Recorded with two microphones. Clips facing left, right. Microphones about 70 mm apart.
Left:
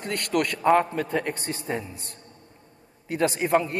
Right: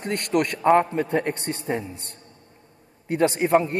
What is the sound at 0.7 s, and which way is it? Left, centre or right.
Speech, centre.